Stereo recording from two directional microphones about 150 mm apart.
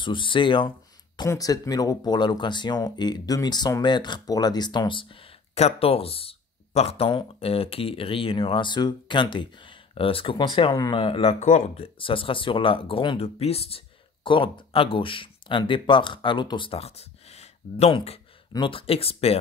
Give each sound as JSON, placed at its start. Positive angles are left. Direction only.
{"t": 0.0, "sound": "speech", "side_deg": 35}
{"t": 5.5, "sound": "speech", "side_deg": 45}
{"t": 11.3, "sound": "speech", "side_deg": 55}